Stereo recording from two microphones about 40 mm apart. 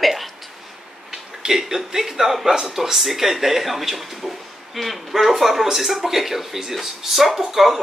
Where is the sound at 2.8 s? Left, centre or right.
Centre.